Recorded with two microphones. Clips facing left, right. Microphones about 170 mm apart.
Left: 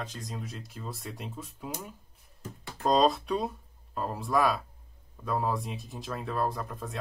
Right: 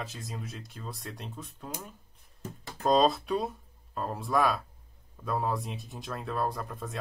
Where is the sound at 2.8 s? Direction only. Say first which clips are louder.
Even; centre (ahead or behind).